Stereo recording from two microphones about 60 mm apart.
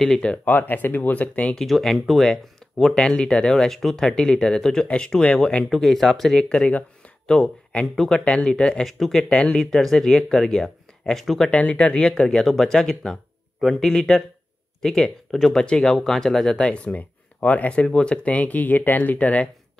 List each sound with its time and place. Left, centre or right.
0.0 s speech: centre
0.5 s speech: left
1.5 s speech: centre
5.7 s speech: centre
6.5 s speech: left
7.8 s speech: centre
8.1 s speech: centre
11.5 s speech: left
12.4 s speech: centre
15.5 s speech: centre